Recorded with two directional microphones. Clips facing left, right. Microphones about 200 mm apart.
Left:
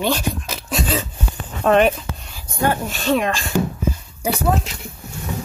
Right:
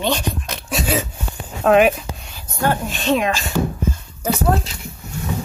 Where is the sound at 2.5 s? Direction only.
10° left (ahead or behind).